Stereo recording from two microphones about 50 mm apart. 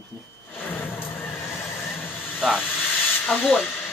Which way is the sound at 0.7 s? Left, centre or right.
Left.